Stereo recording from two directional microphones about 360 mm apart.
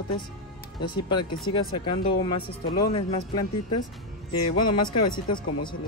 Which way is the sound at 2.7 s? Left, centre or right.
Left.